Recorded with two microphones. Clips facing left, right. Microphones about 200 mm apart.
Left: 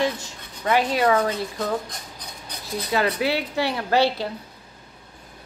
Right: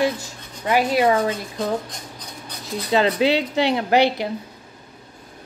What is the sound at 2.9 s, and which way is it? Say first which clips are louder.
Speech: right 5 dB; 25° right (ahead or behind).